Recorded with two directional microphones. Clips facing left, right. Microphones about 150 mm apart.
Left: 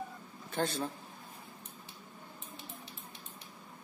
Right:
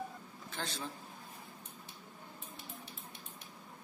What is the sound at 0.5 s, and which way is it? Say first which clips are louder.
Speech: left 9 dB; 55° left (ahead or behind).